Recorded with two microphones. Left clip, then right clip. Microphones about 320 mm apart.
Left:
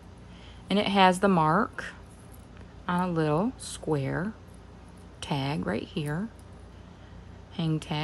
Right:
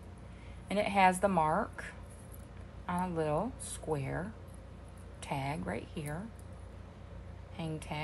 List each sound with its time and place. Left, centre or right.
0.7 s a woman's voice: left
5.2 s a woman's voice: left
7.5 s a woman's voice: left